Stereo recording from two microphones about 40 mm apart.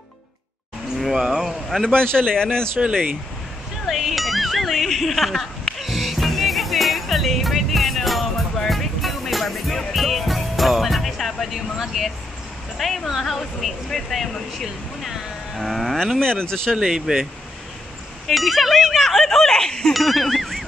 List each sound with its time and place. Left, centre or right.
1.1 s speech: centre
2.2 s speech: centre
3.8 s speech: centre
5.8 s music: centre
11.5 s speech: centre
12.7 s speech: centre
16.2 s speech: centre
16.7 s speech: centre
19.9 s a sound: centre